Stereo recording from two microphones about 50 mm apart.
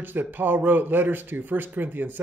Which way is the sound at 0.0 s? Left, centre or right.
Right.